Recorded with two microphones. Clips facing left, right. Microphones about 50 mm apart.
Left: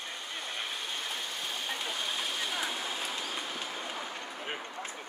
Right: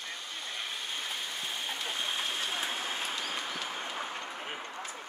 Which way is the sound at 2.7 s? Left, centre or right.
Right.